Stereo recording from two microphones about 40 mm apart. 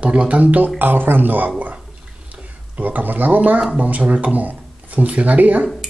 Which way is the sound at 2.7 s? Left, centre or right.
Right.